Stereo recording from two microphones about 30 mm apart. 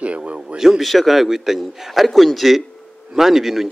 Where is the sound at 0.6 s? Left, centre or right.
Centre.